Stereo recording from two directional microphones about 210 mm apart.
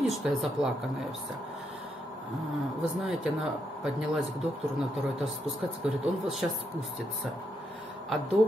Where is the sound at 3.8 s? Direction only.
Centre (ahead or behind).